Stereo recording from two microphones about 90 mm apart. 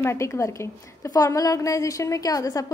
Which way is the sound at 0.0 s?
30° left (ahead or behind).